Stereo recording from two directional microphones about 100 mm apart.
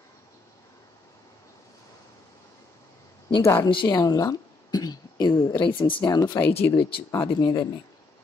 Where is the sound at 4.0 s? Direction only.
35° left (ahead or behind); by 5.9 s 55° left (ahead or behind).